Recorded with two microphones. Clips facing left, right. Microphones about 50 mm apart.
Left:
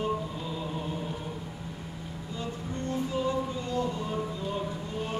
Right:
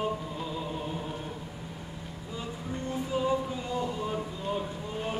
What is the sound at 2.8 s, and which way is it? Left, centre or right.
Music, centre.